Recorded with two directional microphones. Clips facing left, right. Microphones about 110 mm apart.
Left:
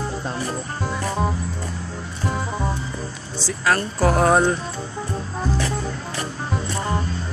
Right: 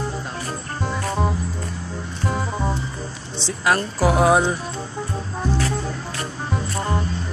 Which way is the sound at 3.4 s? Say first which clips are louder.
Right 1 dB; 20° right (ahead or behind).